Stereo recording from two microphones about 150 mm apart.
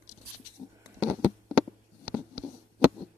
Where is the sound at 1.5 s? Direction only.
10° right (ahead or behind).